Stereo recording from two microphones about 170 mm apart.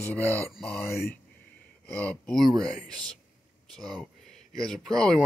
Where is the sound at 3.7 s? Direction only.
5° left (ahead or behind).